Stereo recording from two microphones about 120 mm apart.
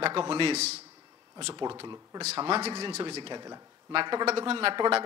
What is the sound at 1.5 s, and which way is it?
Speech, 40° right (ahead or behind).